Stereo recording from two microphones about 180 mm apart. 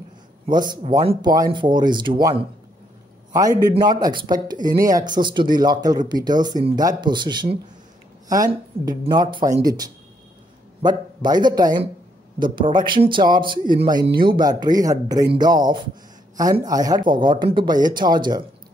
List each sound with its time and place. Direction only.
0.5 s speech: 25° right (ahead or behind)
3.7 s speech: 20° right (ahead or behind)